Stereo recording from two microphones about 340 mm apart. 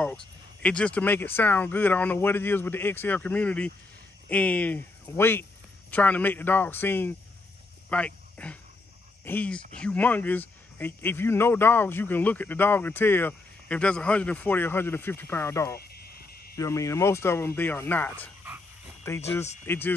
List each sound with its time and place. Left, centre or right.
0.0 s speech: centre
15.8 s cricket: left
16.5 s speech: centre